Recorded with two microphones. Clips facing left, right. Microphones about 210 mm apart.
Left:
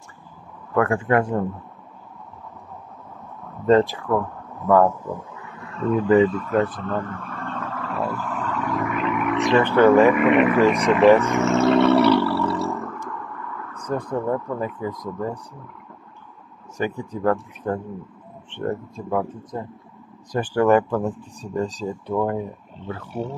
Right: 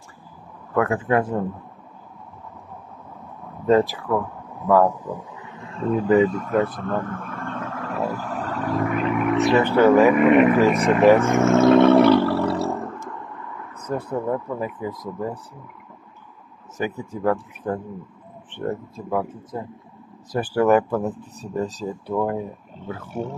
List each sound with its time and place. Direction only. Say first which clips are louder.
0.7 s speech: left 1 dB; 5° right (ahead or behind)
3.6 s speech: left 1 dB; 10° right (ahead or behind); by 6.0 s 30° right (ahead or behind)
6.0 s speech: left 1 dB; 40° left (ahead or behind)
6.7 s a sound: right 1 dB; 50° right (ahead or behind); by 9.4 s 30° right (ahead or behind)
9.4 s speech: left 1 dB; 10° right (ahead or behind)
10.1 s speech: right 2 dB; 40° right (ahead or behind)
11.1 s a sound: right 2 dB; 50° right (ahead or behind); by 13.0 s 30° right (ahead or behind)
13.7 s speech: left 1 dB; 5° right (ahead or behind)
16.7 s speech: left 1 dB; 5° right (ahead or behind)